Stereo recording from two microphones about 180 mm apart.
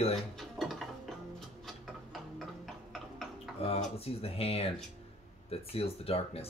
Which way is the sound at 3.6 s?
35° left (ahead or behind).